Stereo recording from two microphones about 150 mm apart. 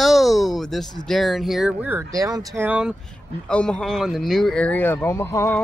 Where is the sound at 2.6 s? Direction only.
10° right (ahead or behind).